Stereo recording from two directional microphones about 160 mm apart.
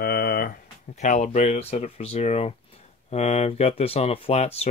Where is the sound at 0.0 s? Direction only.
80° left.